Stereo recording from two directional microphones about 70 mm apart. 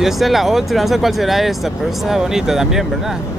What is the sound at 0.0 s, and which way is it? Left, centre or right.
Speech, centre.